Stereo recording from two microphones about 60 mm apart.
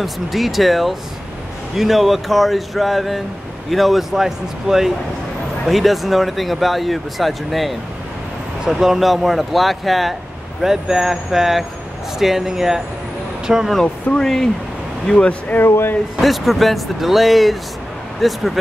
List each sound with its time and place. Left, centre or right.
0.0 s speech: centre
14.1 s speech: centre
15.5 s speech: left
16.2 s speech: centre